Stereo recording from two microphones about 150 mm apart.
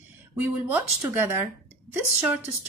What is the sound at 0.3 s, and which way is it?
A woman's voice, 10° right (ahead or behind).